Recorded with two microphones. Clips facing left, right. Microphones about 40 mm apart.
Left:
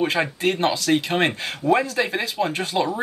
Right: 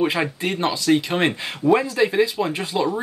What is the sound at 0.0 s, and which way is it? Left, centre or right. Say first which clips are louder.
Speech: even; centre.